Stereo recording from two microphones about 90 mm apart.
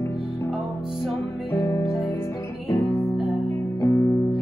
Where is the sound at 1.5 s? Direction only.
30° left (ahead or behind).